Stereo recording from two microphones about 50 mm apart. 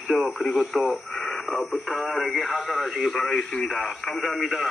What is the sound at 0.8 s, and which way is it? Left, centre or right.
Radio, centre.